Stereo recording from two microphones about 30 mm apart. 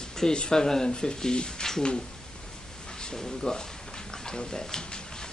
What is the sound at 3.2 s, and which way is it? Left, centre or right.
Speech, centre.